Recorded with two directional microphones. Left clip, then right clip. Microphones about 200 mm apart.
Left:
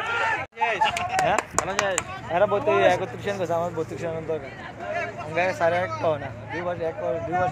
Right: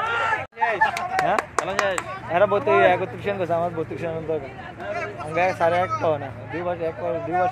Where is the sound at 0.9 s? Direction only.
60° left (ahead or behind).